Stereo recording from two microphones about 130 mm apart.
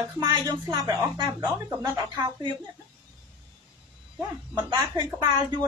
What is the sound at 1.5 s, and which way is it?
Speech, 20° right (ahead or behind).